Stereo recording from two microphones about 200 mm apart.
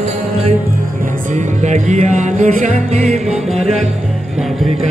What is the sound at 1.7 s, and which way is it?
Music, 35° right (ahead or behind).